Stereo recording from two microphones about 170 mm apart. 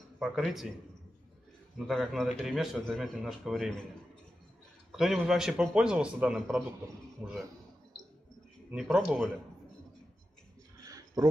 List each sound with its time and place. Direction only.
0.2 s a man's voice: centre (ahead or behind)
1.9 s a man's voice: centre (ahead or behind)
4.9 s a man's voice: centre (ahead or behind)
8.7 s speech: 5° right (ahead or behind)
11.2 s speech: 20° right (ahead or behind)